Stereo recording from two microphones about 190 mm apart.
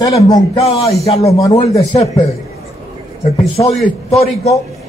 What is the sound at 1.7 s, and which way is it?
Speech, 30° left (ahead or behind).